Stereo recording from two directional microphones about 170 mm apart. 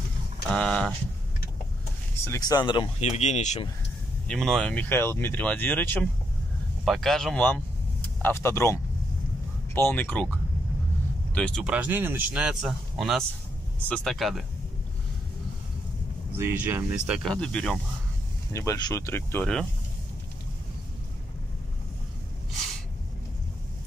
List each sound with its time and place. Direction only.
0.5 s speech: 5° left (ahead or behind)
2.2 s speech: 20° left (ahead or behind); by 3.6 s 45° left (ahead or behind)
4.3 s speech: 5° left (ahead or behind)
11.3 s speech: 5° left (ahead or behind)
11.6 s a man's voice: 10° right (ahead or behind)
16.3 s a man's voice: 10° right (ahead or behind)
17.3 s speech: 5° left (ahead or behind)
18.5 s speech: 20° left (ahead or behind)